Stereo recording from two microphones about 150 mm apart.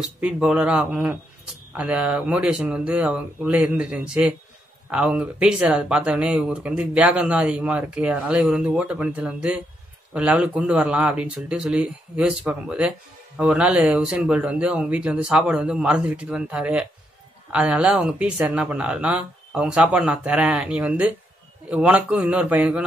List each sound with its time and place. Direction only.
0.0 s speech: 5° right (ahead or behind)